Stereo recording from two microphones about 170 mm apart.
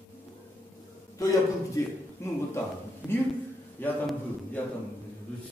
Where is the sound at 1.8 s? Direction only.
20° left (ahead or behind).